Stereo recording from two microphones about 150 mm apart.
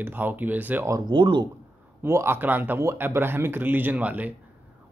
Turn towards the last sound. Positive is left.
turn(degrees=-10)  # may be behind; listen again after turning